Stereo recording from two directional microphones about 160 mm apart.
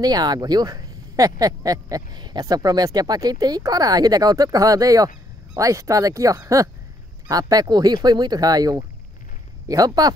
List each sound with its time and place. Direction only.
0.0 s speech: 25° right (ahead or behind)